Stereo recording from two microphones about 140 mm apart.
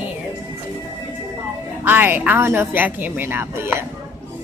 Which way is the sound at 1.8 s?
15° right (ahead or behind).